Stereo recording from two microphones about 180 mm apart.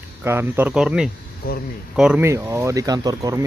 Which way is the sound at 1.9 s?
5° right (ahead or behind).